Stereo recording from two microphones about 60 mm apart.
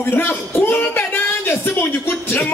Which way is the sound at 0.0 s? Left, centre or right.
Left.